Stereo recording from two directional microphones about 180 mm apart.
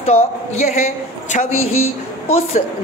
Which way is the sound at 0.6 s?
40° left (ahead or behind).